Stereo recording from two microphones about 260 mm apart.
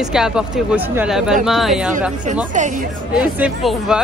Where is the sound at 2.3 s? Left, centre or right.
Right.